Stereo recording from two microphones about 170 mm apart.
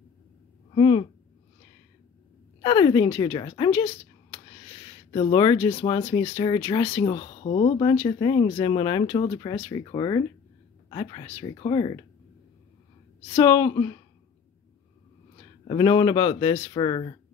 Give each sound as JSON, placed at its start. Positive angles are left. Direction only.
{"t": 0.7, "sound": "speech", "side_deg": 30}
{"t": 2.6, "sound": "speech", "side_deg": 25}
{"t": 4.0, "sound": "a sound", "side_deg": 35}
{"t": 5.1, "sound": "speech", "side_deg": 30}
{"t": 7.2, "sound": "speech", "side_deg": 35}
{"t": 13.4, "sound": "speech", "side_deg": 20}
{"t": 15.3, "sound": "speech", "side_deg": 30}